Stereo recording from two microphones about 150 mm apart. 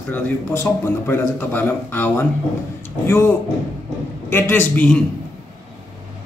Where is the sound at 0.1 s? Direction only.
15° left (ahead or behind).